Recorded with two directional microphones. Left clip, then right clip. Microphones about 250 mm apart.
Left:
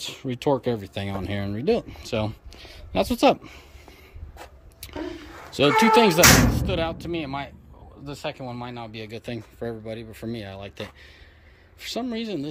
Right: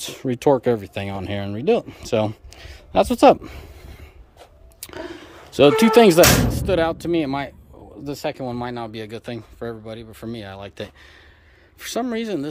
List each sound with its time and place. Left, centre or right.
0.0 s speech: centre